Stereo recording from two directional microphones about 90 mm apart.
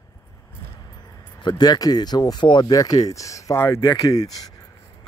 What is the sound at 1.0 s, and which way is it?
Speech, 50° left (ahead or behind).